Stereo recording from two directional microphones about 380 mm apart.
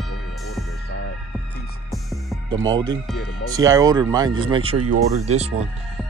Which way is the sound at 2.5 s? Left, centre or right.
Centre.